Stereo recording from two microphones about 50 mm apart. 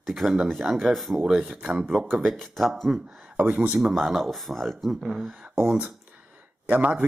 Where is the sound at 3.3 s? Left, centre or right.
Right.